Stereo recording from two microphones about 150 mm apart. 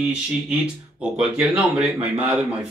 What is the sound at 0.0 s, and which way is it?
Speech, 5° right (ahead or behind).